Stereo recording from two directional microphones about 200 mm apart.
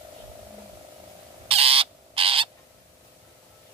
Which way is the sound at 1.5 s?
30° right (ahead or behind).